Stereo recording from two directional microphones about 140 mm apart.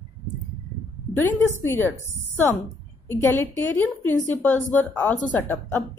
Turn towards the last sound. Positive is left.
turn(degrees=15)  # may be behind; listen again after turning